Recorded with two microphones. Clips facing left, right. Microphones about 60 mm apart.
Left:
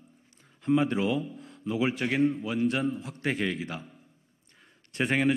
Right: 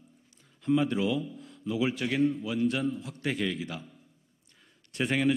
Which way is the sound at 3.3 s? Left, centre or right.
Left.